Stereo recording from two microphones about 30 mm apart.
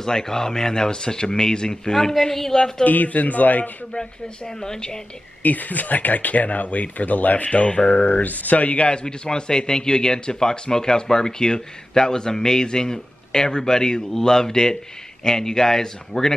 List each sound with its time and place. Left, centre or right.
0.0 s speech: centre
2.0 s speech: centre
2.8 s speech: left
3.9 s speech: left
5.4 s speech: left
7.9 s speech: left
8.6 s a man's voice: left
9.0 s speech: left